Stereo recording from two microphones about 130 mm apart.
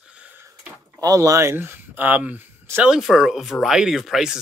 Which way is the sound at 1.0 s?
25° right (ahead or behind).